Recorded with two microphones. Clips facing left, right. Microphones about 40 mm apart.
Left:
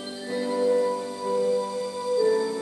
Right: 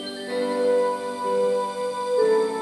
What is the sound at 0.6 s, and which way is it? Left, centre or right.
Music, right.